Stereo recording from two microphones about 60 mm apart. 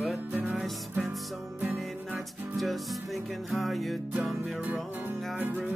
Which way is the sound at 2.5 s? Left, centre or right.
Centre.